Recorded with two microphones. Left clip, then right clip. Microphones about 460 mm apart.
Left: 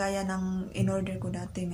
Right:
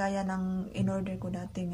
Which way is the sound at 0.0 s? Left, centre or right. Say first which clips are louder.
Left 1 dB; right.